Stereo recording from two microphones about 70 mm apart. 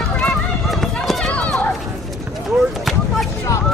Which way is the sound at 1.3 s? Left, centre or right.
Centre.